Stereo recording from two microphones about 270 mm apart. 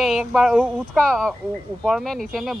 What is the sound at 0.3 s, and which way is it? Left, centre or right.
Speech, centre.